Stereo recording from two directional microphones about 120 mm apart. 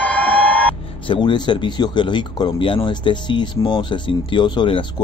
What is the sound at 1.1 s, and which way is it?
Speech, 40° left (ahead or behind).